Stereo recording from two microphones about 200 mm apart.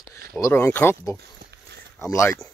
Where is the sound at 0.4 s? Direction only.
10° left (ahead or behind).